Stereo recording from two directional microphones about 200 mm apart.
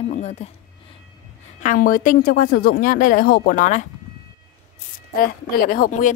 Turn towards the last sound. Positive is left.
turn(degrees=40)  # may be behind; listen again after turning